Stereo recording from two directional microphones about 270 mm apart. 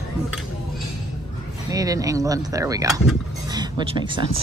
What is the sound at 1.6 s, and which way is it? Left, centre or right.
Speech, centre.